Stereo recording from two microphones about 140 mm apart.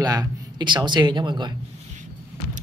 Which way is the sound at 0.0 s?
25° right (ahead or behind).